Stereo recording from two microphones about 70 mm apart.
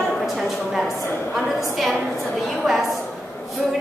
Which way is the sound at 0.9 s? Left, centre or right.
Left.